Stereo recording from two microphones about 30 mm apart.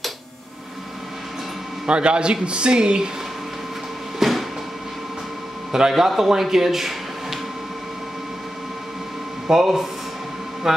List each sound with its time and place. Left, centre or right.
1.9 s speech: right
4.2 s train: centre
5.9 s speech: centre
9.5 s speech: centre